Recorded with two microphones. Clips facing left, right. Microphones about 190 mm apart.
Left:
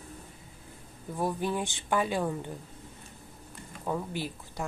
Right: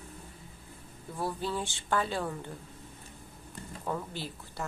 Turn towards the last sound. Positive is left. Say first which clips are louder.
# left 4 dB
turn(degrees=15)  # may be behind; listen again after turning